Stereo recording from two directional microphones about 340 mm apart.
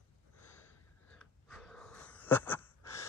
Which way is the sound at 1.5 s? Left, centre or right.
Centre.